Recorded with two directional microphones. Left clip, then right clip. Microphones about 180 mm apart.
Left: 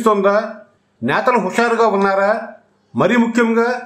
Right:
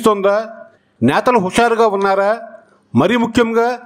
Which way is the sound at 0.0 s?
40° right (ahead or behind).